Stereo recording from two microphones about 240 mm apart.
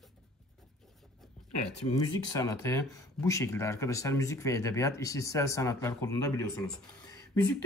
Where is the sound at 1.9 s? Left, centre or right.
Centre.